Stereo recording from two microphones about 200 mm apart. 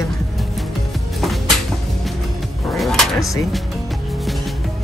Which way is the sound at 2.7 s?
Centre (ahead or behind).